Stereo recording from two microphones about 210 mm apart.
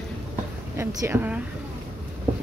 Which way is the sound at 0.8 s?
15° right (ahead or behind).